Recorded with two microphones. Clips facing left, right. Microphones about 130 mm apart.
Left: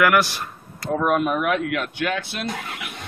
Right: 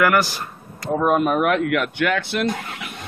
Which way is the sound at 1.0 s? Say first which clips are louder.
Right 3 dB; 35° right (ahead or behind).